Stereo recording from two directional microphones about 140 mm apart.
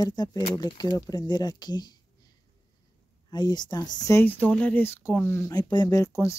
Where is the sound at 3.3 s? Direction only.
30° left (ahead or behind).